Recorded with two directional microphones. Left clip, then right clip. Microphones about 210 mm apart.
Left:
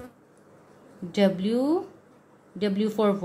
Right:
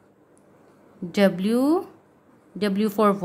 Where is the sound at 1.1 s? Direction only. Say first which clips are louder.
Right 3 dB; 20° right (ahead or behind).